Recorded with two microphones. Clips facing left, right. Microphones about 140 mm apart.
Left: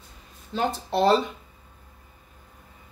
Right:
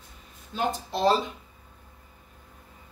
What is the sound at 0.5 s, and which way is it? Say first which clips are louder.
Speech: left 3 dB; 60° left (ahead or behind).